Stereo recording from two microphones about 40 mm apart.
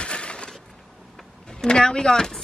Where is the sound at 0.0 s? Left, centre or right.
Left.